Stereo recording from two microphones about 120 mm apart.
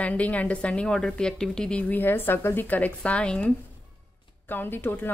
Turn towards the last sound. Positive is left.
turn(degrees=15)  # may be behind; listen again after turning